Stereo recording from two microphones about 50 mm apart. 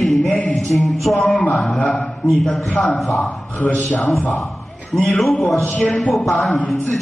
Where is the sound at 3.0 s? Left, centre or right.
Centre.